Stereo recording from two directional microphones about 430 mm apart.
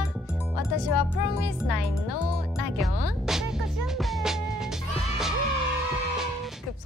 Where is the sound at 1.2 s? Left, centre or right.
Left.